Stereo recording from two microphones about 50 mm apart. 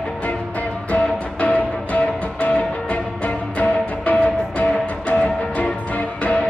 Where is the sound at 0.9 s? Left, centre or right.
Left.